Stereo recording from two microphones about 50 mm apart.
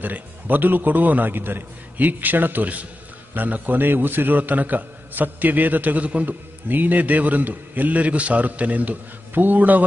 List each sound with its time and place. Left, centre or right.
0.0 s a man's voice: right